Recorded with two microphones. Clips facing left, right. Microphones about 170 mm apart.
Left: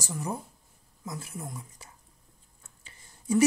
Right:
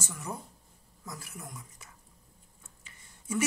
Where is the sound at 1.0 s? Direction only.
25° left (ahead or behind).